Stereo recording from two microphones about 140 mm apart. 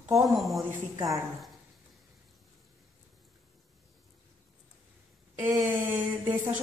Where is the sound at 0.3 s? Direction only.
Centre (ahead or behind).